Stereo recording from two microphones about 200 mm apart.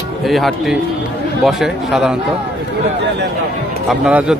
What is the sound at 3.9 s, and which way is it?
Speech, 5° right (ahead or behind).